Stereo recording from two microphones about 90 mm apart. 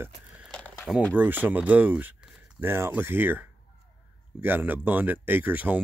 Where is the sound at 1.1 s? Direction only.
20° right (ahead or behind).